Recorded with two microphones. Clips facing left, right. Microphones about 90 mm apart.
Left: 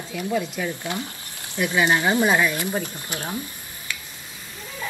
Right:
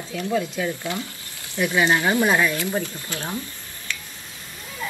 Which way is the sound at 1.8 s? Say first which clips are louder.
Even; 20° left (ahead or behind).